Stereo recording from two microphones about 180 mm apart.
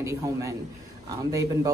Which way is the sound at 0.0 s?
15° right (ahead or behind).